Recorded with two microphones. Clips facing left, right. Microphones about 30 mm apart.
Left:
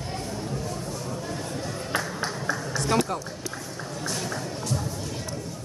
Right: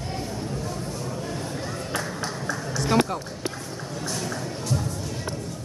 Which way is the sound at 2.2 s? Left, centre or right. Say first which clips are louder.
Left 1 dB; centre.